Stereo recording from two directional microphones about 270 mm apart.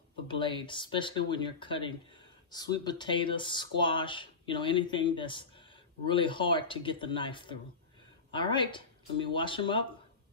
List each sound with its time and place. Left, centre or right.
0.3 s speech: centre